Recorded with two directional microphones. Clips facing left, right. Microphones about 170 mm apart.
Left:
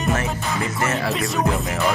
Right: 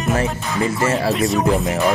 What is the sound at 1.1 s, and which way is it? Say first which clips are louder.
Music: right 5 dB; centre (ahead or behind).